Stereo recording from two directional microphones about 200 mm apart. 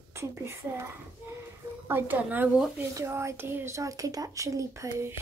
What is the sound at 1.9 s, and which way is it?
Speech, 10° right (ahead or behind).